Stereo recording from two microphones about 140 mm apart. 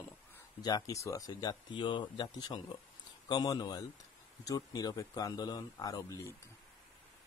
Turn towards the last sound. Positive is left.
turn(degrees=20)  # may be behind; listen again after turning